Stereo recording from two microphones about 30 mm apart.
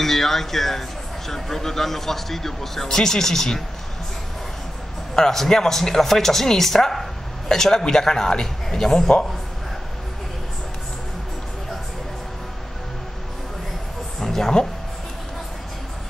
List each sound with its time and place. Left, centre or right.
0.0 s a man's voice: centre
5.2 s a man's voice: centre
14.2 s a sound: centre